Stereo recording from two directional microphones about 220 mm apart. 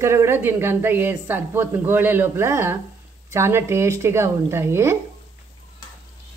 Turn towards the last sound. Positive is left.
turn(degrees=-10)  # may be behind; listen again after turning